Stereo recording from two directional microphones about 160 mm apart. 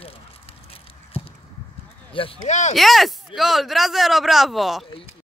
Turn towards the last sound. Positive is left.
turn(degrees=0)  # may be behind; listen again after turning